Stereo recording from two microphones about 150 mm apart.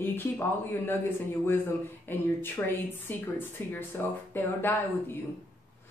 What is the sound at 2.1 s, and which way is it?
Speech, 15° left (ahead or behind).